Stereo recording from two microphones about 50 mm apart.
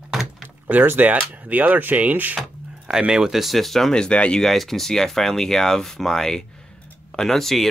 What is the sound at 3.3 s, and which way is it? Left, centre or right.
Speech, centre.